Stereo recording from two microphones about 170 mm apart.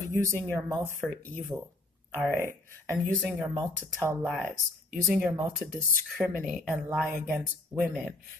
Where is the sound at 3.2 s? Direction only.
Centre (ahead or behind).